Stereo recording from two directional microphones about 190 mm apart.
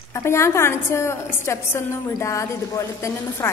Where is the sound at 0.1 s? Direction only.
15° left (ahead or behind).